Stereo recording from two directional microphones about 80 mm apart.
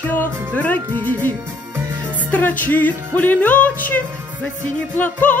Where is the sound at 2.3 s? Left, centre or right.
Left.